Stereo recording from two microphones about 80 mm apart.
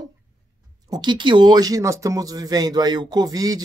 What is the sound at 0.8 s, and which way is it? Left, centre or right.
Speech, right.